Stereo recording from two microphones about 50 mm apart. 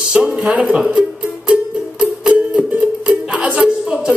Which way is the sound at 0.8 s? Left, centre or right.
Centre.